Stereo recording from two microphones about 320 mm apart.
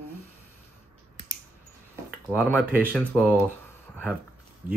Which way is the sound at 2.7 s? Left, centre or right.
Centre.